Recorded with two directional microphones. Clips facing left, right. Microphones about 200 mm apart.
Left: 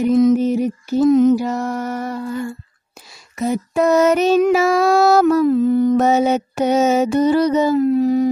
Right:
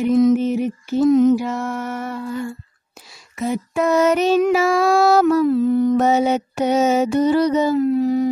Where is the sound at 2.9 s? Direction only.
40° left (ahead or behind).